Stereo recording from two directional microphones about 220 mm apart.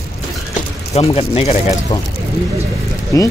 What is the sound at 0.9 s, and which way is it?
Speech, 30° left (ahead or behind).